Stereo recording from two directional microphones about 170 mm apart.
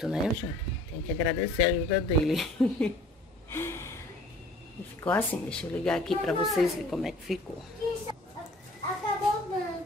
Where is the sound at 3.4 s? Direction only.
15° left (ahead or behind).